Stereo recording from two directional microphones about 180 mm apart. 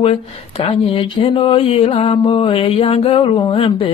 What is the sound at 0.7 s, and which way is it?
Mantra, 30° left (ahead or behind).